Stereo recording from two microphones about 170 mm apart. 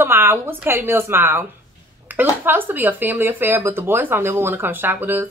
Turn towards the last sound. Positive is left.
turn(degrees=-10)  # may be behind; listen again after turning